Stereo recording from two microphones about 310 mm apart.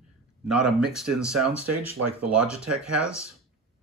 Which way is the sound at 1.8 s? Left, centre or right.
Right.